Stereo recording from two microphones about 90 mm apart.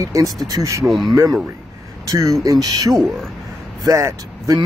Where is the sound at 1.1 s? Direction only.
45° right (ahead or behind).